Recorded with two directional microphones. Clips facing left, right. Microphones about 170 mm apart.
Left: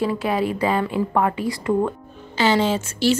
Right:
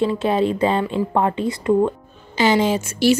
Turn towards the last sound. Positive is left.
turn(degrees=-15)  # may be behind; listen again after turning